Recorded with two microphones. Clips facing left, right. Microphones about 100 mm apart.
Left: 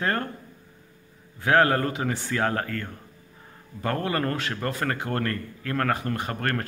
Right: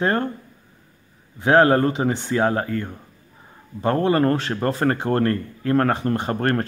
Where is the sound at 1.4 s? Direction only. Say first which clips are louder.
Right 6 dB; 25° right (ahead or behind).